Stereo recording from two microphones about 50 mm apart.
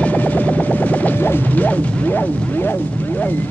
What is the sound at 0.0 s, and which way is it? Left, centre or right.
Music, left.